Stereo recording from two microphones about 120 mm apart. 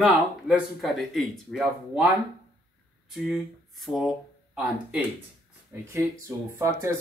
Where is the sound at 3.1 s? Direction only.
Centre (ahead or behind).